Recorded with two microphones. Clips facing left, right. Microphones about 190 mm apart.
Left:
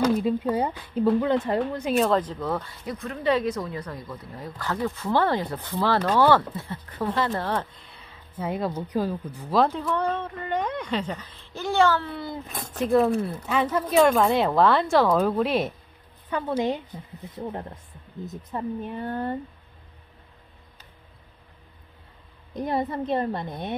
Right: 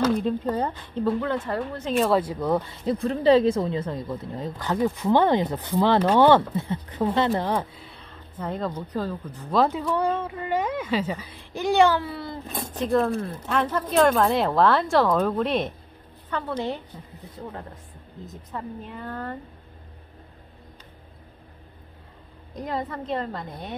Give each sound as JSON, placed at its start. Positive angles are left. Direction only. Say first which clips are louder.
{"t": 0.0, "sound": "speech", "louder": "even", "side_deg": 5}
{"t": 2.0, "sound": "speech", "louder": "right 2 dB", "side_deg": -10}
{"t": 12.1, "sound": "speech", "louder": "even", "side_deg": 0}
{"t": 19.0, "sound": "a woman's voice", "louder": "left 4 dB", "side_deg": 25}
{"t": 22.8, "sound": "a woman's voice", "louder": "left 4 dB", "side_deg": 20}